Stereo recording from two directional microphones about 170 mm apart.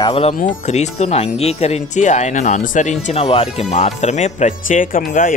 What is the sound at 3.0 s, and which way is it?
Speech, 35° left (ahead or behind).